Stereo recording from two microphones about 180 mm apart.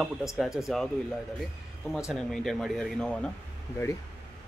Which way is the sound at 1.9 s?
Centre (ahead or behind).